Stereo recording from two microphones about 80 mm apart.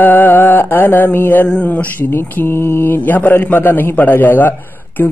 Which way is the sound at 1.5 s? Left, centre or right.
Centre.